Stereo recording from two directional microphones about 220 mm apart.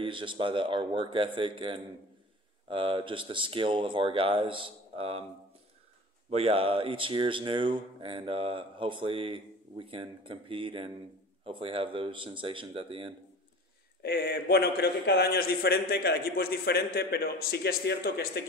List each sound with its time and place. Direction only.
0.0 s speech: 20° right (ahead or behind)
6.3 s speech: 25° right (ahead or behind)
14.0 s a man's voice: 45° left (ahead or behind)